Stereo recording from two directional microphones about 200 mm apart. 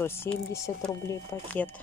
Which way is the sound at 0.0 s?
10° left (ahead or behind).